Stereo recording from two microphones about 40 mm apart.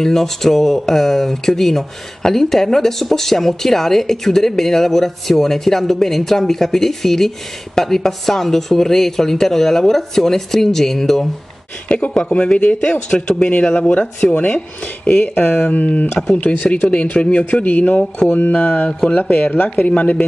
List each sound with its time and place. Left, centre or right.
0.0 s speech: centre
12.2 s speech: left
14.3 s speech: left
15.0 s speech: left
16.2 s speech: centre
16.9 s speech: left
19.5 s speech: left
19.9 s speech: left